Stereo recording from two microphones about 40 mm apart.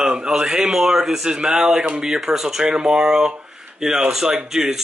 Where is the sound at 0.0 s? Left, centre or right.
Right.